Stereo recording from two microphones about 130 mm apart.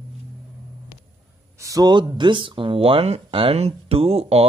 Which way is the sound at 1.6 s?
30° right (ahead or behind).